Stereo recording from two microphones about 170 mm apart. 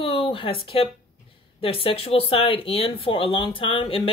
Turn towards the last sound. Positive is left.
turn(degrees=30)  # may be behind; listen again after turning